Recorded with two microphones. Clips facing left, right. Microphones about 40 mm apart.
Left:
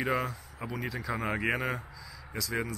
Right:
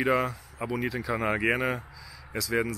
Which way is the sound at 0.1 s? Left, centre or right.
Centre.